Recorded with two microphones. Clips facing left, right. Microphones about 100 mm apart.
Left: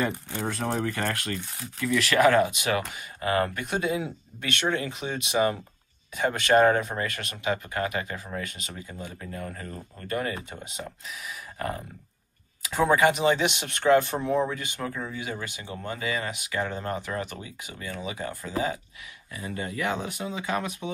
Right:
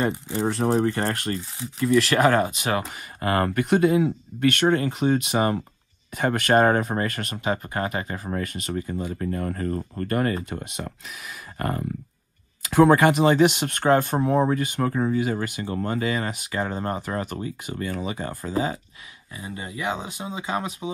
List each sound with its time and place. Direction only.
0.0 s speech: 25° right (ahead or behind)
1.9 s speech: 45° right (ahead or behind)
2.9 s speech: 50° right (ahead or behind)
10.5 s speech: 65° right (ahead or behind)
11.5 s a sound: 55° right (ahead or behind)
12.7 s speech: 55° right (ahead or behind); by 18.8 s 40° right (ahead or behind)
19.3 s speech: 20° right (ahead or behind)